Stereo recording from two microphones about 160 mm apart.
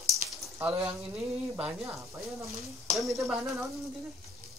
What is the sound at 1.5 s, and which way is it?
Speech, 10° right (ahead or behind).